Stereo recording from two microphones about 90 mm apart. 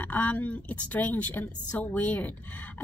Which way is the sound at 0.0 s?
20° left (ahead or behind).